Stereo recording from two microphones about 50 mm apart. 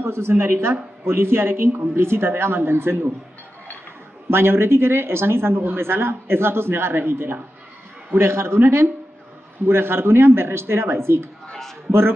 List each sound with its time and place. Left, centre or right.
0.0 s a man's voice: right
4.3 s a man's voice: right
11.4 s a sound: centre